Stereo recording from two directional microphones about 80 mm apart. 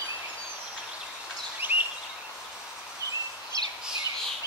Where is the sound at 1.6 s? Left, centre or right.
Right.